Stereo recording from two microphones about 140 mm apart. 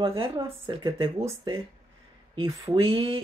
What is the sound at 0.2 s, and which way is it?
Speech, 30° right (ahead or behind).